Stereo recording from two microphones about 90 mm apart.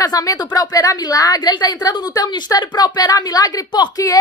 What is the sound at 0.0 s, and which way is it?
Speech, 40° left (ahead or behind).